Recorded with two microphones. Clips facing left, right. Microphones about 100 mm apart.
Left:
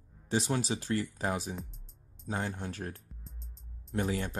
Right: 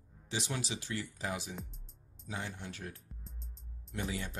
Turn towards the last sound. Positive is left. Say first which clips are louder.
# left 7 dB
turn(degrees=45)  # may be behind; listen again after turning